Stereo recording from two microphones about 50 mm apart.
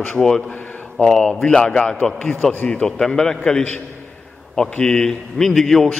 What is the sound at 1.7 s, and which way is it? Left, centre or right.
Speech, centre.